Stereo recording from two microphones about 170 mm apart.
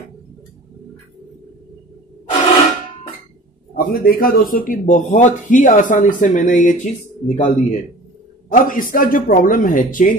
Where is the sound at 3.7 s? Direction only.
60° left (ahead or behind).